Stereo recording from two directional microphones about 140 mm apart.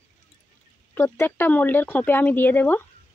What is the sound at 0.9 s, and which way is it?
Speech, 15° left (ahead or behind).